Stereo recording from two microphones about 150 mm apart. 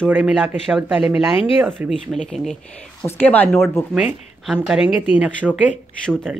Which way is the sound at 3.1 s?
10° left (ahead or behind).